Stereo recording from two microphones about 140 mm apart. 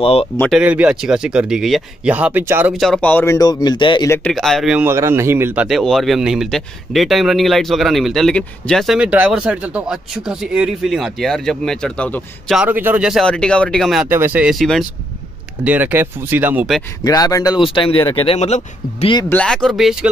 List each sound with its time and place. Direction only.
0.0 s speech: 40° left (ahead or behind)
0.5 s speech: 10° right (ahead or behind)
2.8 s speech: 5° left (ahead or behind)
3.3 s speech: 30° left (ahead or behind)
4.3 s speech: centre (ahead or behind)
4.7 s speech: 15° right (ahead or behind)
5.7 s speech: centre (ahead or behind)
12.5 s speech: 15° right (ahead or behind)
13.2 s speech: 5° left (ahead or behind)
14.0 s speech: 15° right (ahead or behind)
15.6 s speech: 10° right (ahead or behind)
17.0 s speech: 25° left (ahead or behind)
17.6 s speech: 40° left (ahead or behind)
19.2 s speech: 10° left (ahead or behind)